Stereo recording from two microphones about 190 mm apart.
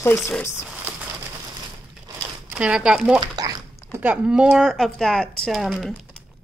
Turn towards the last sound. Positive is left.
turn(degrees=0)  # may be behind; listen again after turning